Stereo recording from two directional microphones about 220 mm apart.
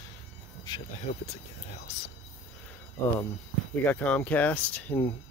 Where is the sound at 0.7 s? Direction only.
20° left (ahead or behind).